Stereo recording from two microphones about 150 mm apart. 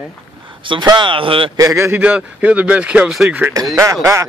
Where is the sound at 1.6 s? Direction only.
20° right (ahead or behind).